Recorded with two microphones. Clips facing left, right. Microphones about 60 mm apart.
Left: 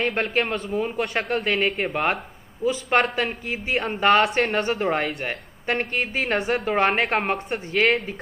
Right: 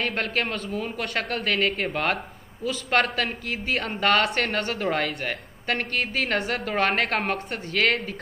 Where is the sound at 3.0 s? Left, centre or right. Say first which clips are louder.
Left 2 dB; centre.